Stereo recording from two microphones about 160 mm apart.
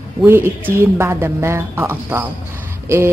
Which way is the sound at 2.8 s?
15° right (ahead or behind).